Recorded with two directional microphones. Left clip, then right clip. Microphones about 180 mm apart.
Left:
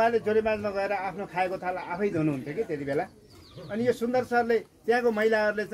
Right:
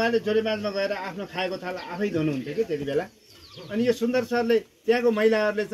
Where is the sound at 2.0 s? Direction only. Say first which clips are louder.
Right 2 dB; 50° right (ahead or behind).